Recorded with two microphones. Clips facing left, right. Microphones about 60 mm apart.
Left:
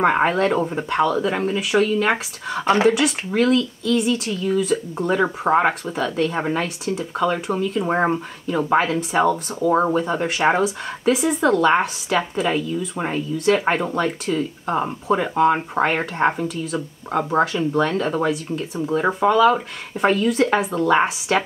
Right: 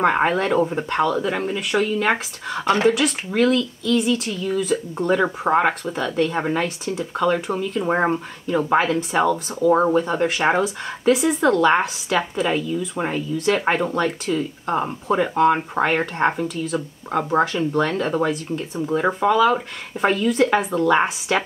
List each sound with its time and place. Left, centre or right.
0.0 s speech: centre
2.6 s speech: left
2.9 s speech: centre